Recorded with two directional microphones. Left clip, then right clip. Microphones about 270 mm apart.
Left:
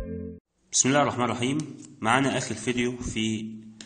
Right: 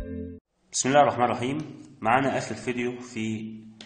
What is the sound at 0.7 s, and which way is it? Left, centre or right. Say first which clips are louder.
A man's voice: right 3 dB; left.